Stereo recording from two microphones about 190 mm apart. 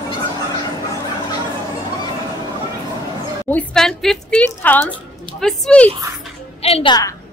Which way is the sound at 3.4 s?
10° left (ahead or behind).